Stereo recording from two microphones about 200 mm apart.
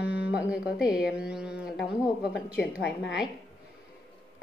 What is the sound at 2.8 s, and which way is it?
Speech, 60° left (ahead or behind).